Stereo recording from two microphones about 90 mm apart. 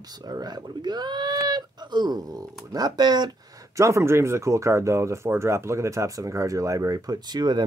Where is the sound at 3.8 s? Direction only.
35° right (ahead or behind); by 7.6 s 50° right (ahead or behind).